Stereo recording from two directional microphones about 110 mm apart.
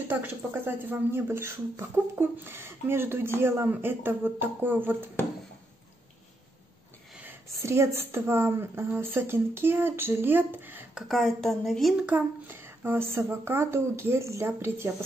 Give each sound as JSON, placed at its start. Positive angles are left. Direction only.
{"t": 0.1, "sound": "speech", "side_deg": -20}
{"t": 7.6, "sound": "speech", "side_deg": -25}
{"t": 11.0, "sound": "speech", "side_deg": 0}
{"t": 12.1, "sound": "speech", "side_deg": -20}